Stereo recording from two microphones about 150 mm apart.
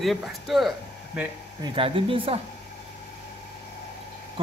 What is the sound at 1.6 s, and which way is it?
Speech, 35° right (ahead or behind).